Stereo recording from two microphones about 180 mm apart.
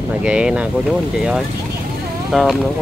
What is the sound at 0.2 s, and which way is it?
Speech, 5° right (ahead or behind).